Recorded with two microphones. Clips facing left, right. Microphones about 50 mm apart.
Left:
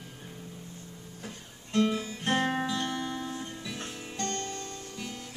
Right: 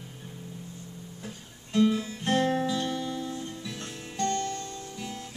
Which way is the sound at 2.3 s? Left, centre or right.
Centre.